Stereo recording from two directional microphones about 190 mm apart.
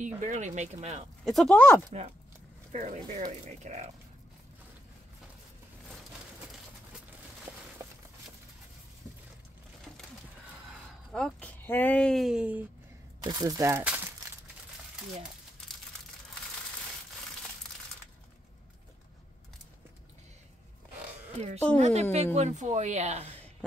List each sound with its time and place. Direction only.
0.0 s speech: 40° right (ahead or behind)
1.2 s speech: centre (ahead or behind)
2.7 s speech: 45° right (ahead or behind)
11.1 s speech: 5° left (ahead or behind)
13.2 s speech: 20° right (ahead or behind)
21.4 s speech: 35° right (ahead or behind)